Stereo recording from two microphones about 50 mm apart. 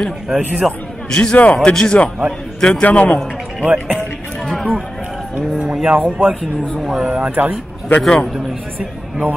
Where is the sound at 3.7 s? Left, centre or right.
Right.